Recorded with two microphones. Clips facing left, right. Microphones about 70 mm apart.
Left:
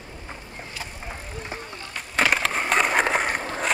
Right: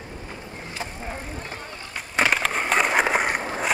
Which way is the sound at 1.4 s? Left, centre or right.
Centre.